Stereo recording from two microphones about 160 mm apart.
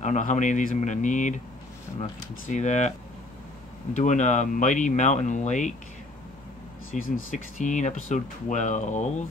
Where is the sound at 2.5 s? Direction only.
50° left (ahead or behind).